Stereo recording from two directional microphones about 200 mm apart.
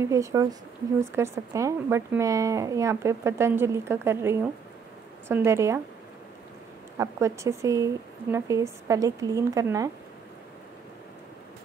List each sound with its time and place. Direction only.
0.0 s a woman's voice: 15° right (ahead or behind)
7.0 s a woman's voice: 15° right (ahead or behind)